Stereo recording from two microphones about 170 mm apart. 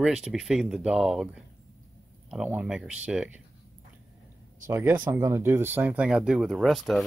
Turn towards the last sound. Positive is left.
turn(degrees=0)  # may be behind; listen again after turning